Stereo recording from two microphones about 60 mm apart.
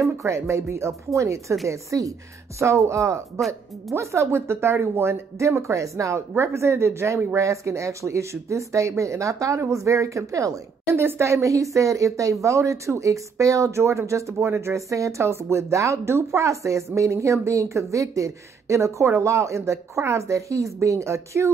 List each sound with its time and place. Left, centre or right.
0.0 s speech: right
1.7 s speech: right
2.6 s speech: right
10.9 s speech: right